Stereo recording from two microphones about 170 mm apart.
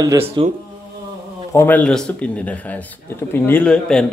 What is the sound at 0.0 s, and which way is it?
Speech, 20° right (ahead or behind).